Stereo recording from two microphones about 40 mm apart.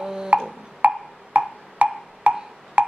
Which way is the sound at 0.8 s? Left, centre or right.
Right.